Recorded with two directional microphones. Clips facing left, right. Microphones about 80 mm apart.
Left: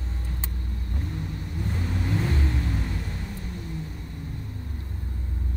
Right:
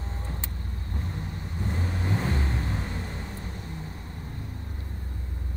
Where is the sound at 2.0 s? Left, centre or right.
Right.